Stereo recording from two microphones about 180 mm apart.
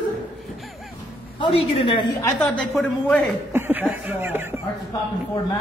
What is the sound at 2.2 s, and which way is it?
A woman's voice, 5° left (ahead or behind).